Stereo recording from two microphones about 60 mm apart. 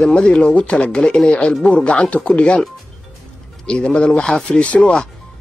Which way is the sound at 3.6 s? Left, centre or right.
Centre.